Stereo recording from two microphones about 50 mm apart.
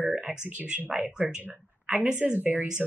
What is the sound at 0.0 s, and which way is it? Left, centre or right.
Speech, centre.